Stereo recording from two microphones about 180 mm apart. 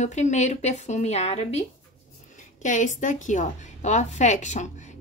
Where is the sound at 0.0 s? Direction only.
40° left (ahead or behind).